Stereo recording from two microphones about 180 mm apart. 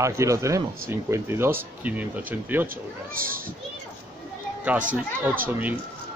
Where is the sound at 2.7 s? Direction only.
50° right (ahead or behind).